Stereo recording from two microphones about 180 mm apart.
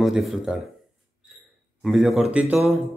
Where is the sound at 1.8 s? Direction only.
Centre (ahead or behind).